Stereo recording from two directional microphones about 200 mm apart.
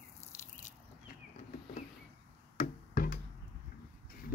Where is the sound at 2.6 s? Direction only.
45° left (ahead or behind).